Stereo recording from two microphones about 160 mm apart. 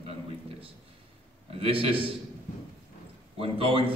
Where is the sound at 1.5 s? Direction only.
35° right (ahead or behind).